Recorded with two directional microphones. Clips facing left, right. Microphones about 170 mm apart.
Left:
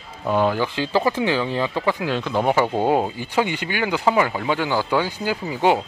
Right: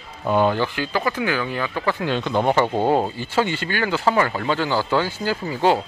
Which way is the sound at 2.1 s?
Centre (ahead or behind).